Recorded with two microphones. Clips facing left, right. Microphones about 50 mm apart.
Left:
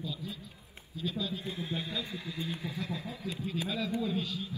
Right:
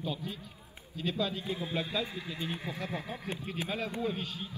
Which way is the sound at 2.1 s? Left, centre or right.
Right.